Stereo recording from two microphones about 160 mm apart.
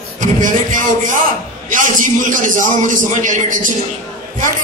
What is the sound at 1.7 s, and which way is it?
A man's voice, 55° right (ahead or behind).